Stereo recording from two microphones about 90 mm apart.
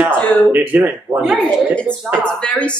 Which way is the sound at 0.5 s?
20° right (ahead or behind).